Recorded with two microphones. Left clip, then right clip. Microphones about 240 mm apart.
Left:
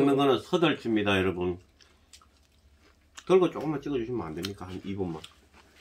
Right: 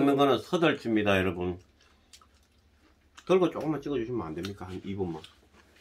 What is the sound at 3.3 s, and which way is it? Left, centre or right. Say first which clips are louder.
Speech: left 2 dB; centre.